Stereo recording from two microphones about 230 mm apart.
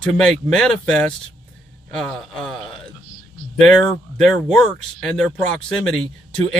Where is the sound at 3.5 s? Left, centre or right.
Centre.